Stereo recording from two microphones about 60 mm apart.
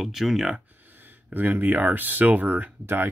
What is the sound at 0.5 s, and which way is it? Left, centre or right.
Speech, right.